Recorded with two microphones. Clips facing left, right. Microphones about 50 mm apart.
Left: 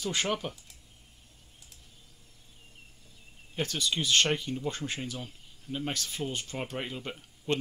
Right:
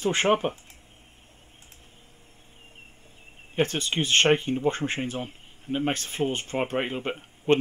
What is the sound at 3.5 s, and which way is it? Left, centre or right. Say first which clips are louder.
Speech: right 6 dB; right.